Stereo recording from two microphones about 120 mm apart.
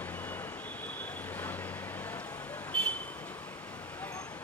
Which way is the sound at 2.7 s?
10° left (ahead or behind).